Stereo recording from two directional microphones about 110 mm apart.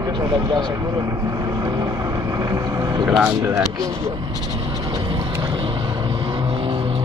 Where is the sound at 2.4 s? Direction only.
35° right (ahead or behind).